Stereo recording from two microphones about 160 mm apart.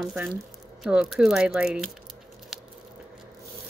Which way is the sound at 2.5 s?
Centre (ahead or behind).